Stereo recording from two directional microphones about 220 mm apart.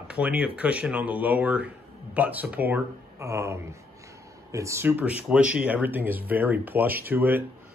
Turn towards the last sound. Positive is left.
turn(degrees=-10)  # may be behind; listen again after turning